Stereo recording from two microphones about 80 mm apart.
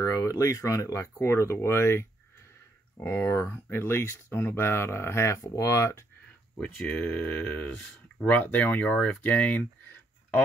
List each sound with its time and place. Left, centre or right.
0.0 s speech: left
6.9 s speech: centre